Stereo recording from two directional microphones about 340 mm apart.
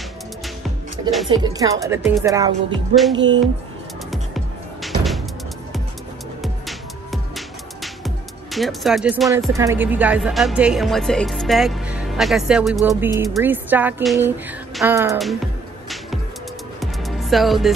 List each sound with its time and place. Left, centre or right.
1.4 s speech: centre
3.2 s speech: right
4.8 s music: centre
7.1 s speech: centre
16.8 s music: centre